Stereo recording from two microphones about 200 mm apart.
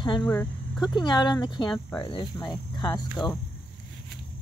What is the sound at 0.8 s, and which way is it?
Speech, 20° left (ahead or behind).